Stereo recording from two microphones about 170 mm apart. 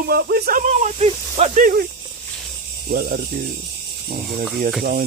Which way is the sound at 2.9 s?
70° right (ahead or behind).